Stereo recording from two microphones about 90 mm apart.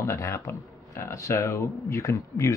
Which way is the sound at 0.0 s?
35° left (ahead or behind).